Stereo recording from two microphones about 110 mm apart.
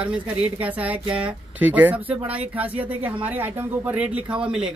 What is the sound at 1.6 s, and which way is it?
Speech, 15° right (ahead or behind).